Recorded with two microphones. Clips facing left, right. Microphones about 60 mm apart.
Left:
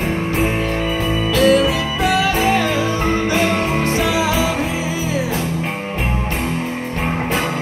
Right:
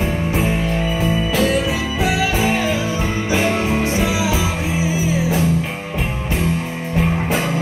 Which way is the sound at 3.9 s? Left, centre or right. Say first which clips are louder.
Left 2 dB; left.